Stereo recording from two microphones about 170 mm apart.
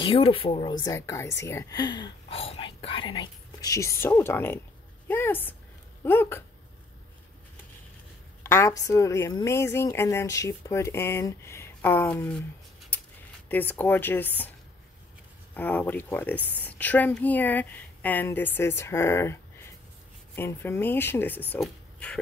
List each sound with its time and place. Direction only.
0.0 s a woman's voice: 30° left (ahead or behind); by 6.4 s 15° left (ahead or behind)
8.5 s a woman's voice: 15° left (ahead or behind)
12.9 s a sound: 10° left (ahead or behind)
13.5 s a woman's voice: 10° left (ahead or behind)
15.5 s a woman's voice: 10° left (ahead or behind)